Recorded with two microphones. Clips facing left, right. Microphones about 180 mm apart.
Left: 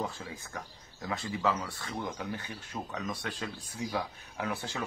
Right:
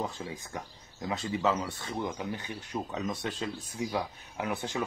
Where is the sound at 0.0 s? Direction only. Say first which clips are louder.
Right 2 dB; 20° right (ahead or behind).